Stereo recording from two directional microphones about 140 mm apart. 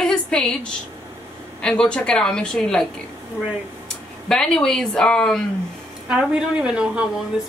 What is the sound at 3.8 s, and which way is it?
Speech, 5° left (ahead or behind).